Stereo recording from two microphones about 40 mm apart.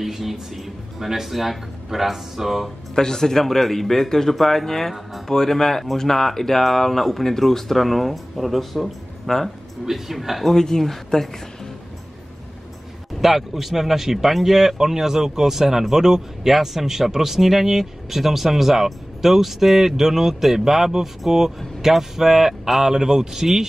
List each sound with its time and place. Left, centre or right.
0.0 s speech: centre
2.9 s speech: centre
10.5 s a woman's voice: centre
13.2 s speech: centre